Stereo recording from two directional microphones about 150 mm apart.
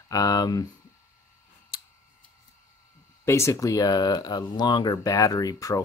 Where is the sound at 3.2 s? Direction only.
20° left (ahead or behind).